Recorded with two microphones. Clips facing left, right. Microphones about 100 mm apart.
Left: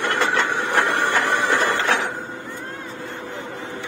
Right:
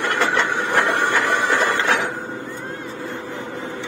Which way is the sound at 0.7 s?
15° right (ahead or behind).